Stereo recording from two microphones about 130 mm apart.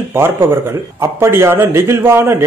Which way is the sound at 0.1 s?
20° right (ahead or behind).